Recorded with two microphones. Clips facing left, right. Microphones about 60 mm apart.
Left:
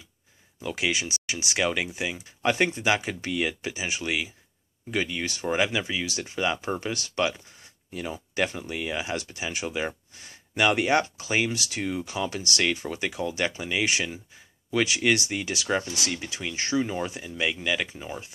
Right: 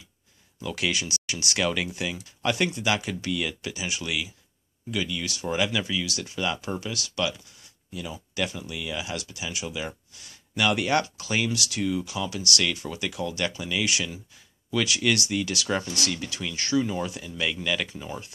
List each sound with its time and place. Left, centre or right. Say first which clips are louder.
0.6 s speech: left 1 dB; left
6.8 s speech: left 2 dB; left